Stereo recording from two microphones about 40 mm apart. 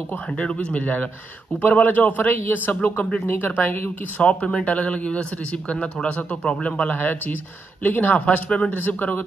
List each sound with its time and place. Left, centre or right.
0.4 s speech: left
1.6 s a man's voice: left
3.3 s a man's voice: left
4.2 s speech: left
6.9 s a man's voice: left
8.3 s speech: left
8.8 s a man's voice: left